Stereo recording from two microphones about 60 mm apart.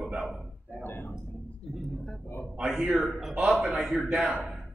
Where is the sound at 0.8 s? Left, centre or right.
Left.